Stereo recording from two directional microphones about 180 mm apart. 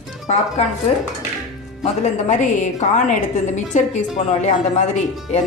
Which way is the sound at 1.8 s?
40° left (ahead or behind).